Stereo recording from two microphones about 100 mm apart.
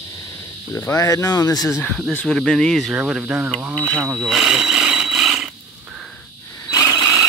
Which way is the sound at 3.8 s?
10° left (ahead or behind).